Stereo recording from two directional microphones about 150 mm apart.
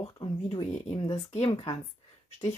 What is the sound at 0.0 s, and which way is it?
Speech, 35° left (ahead or behind).